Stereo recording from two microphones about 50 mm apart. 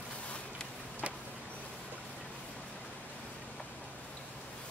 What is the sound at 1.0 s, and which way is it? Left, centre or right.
Vehicle, right.